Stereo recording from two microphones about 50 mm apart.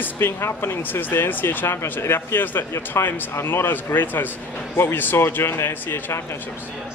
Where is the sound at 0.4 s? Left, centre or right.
Left.